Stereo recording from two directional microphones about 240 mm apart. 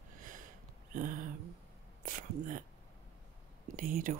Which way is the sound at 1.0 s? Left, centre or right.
Right.